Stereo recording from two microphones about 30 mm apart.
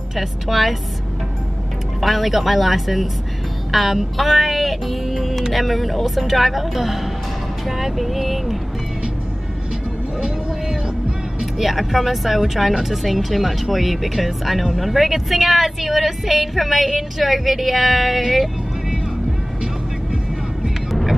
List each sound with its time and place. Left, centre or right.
0.1 s speech: centre
2.0 s a woman's voice: centre
10.2 s music: right
11.5 s a woman's voice: centre
20.9 s music: centre